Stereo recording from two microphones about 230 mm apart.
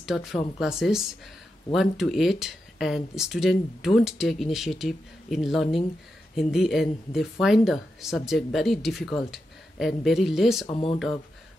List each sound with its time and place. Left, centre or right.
0.0 s speech: centre
10.7 s speech: left